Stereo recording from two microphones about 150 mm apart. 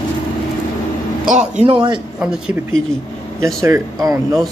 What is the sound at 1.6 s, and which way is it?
Speech, 35° right (ahead or behind).